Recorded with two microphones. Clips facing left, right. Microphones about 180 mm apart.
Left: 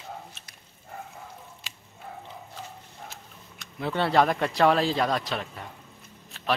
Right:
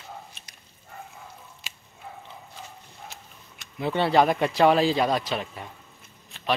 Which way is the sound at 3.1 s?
Centre (ahead or behind).